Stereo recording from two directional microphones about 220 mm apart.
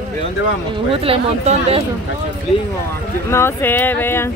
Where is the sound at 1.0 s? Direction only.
25° right (ahead or behind).